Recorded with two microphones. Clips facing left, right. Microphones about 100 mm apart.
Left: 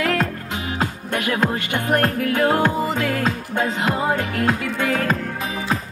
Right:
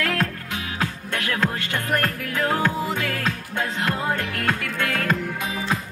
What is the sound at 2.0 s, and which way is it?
Music, 30° left (ahead or behind).